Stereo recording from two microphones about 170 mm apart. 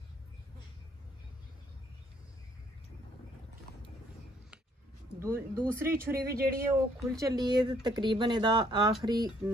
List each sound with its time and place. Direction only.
5.2 s speech: 15° right (ahead or behind)
6.1 s speech: 65° right (ahead or behind)
6.6 s speech: 20° right (ahead or behind)